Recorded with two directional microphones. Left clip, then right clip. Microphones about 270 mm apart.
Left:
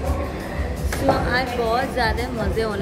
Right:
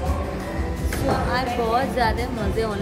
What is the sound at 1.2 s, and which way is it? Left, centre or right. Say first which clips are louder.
A woman's voice: left 1 dB; centre.